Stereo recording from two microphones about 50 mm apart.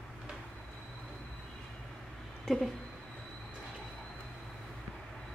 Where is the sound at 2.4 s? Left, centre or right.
Centre.